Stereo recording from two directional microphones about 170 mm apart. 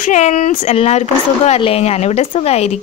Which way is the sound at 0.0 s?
45° left (ahead or behind).